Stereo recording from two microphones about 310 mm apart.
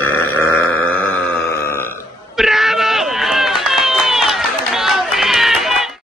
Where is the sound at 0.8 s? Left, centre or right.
Left.